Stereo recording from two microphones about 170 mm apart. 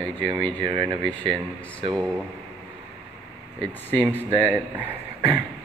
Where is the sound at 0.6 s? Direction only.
30° right (ahead or behind).